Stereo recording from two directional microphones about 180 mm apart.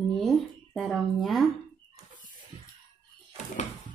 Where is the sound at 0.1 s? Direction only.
Centre (ahead or behind).